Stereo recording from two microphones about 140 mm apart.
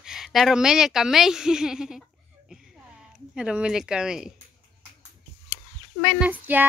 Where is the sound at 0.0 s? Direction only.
5° right (ahead or behind).